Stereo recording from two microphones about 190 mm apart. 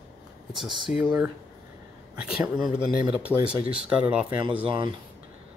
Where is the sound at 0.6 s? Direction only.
25° right (ahead or behind).